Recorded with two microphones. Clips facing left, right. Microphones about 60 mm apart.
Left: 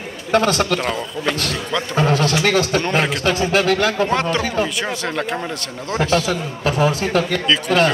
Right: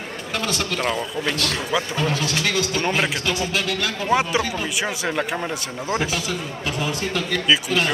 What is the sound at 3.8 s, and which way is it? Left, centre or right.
Speech, left.